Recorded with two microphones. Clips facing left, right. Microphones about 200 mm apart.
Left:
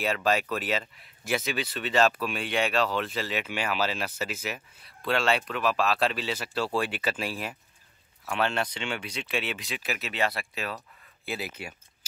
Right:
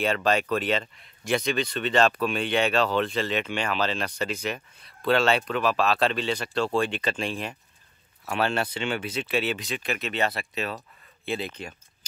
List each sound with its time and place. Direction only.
0.0 s speech: 5° left (ahead or behind)
8.3 s speech: 40° right (ahead or behind)
9.0 s speech: 5° right (ahead or behind)
11.2 s speech: 5° left (ahead or behind)